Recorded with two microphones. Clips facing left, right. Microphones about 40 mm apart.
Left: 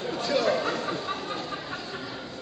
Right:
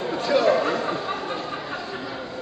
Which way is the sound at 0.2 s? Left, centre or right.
Centre.